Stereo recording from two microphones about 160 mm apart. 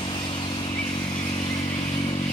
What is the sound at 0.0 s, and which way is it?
Vehicle, 30° left (ahead or behind).